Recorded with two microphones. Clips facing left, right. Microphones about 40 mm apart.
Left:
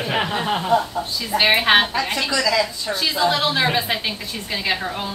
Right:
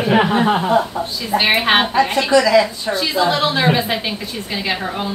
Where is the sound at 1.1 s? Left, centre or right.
Centre.